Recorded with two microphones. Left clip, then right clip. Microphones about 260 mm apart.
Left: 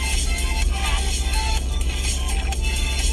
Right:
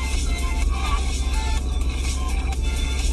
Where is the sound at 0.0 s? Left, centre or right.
Left.